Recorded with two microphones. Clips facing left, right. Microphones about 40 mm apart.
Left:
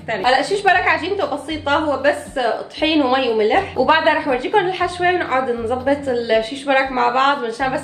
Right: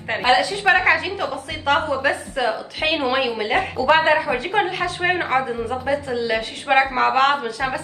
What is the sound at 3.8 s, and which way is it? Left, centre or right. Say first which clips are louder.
Speech: left 2 dB; left.